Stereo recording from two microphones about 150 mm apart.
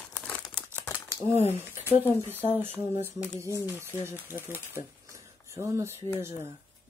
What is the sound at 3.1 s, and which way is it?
Speech, 20° right (ahead or behind).